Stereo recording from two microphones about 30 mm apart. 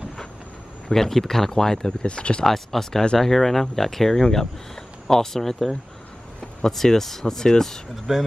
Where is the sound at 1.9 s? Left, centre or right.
Left.